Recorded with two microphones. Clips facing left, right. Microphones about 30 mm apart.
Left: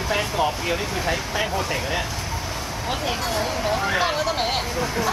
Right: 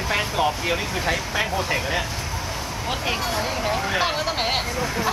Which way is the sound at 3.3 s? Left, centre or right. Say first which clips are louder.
Left 1 dB; centre.